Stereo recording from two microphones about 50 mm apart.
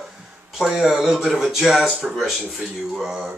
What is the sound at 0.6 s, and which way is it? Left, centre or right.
Speech, centre.